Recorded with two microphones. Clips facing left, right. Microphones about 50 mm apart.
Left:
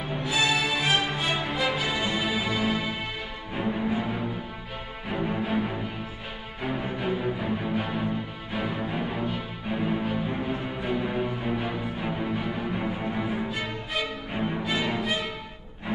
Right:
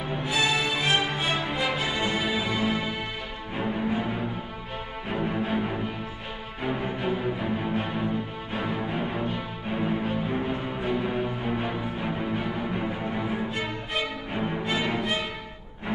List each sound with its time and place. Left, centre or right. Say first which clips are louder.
0.2 s music: left 1 dB; right
3.5 s music: even; centre
5.1 s music: even; centre
7.0 s music: even; centre
14.7 s music: right 1 dB; right